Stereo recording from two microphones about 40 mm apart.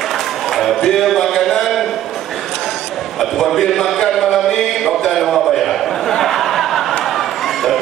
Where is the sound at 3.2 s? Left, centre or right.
Centre.